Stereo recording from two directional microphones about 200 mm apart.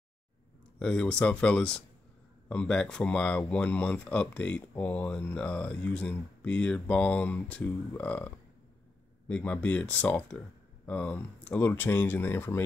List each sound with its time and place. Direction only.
0.7 s speech: 5° left (ahead or behind)
9.3 s speech: 5° left (ahead or behind)